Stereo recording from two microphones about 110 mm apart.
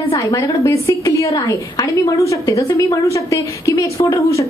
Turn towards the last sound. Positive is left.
turn(degrees=30)  # may be behind; listen again after turning